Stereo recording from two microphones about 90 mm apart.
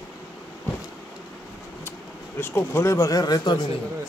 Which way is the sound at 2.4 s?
30° left (ahead or behind).